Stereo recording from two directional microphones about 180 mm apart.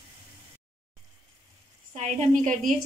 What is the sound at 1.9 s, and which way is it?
Speech, 40° right (ahead or behind).